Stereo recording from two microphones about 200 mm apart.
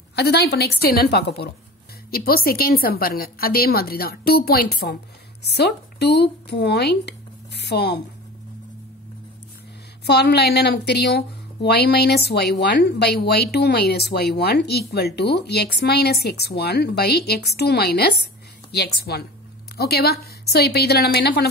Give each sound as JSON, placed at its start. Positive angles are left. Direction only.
{"t": 0.1, "sound": "a woman's voice", "side_deg": 55}
{"t": 10.0, "sound": "a woman's voice", "side_deg": 55}